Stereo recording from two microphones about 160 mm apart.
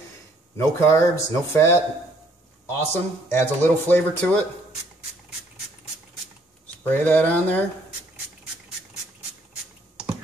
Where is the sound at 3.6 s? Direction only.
10° left (ahead or behind).